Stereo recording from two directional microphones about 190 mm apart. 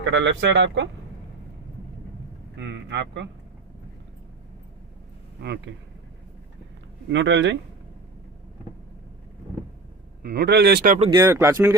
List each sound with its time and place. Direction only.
0.0 s speech: 75° right (ahead or behind)
2.5 s speech: 65° right (ahead or behind)
7.1 s speech: 70° right (ahead or behind)
10.2 s speech: 60° right (ahead or behind)
11.0 s speech: 25° right (ahead or behind)
11.2 s speech: 15° right (ahead or behind)